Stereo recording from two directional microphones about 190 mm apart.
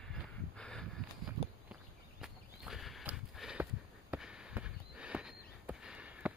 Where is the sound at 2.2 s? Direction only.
Centre (ahead or behind).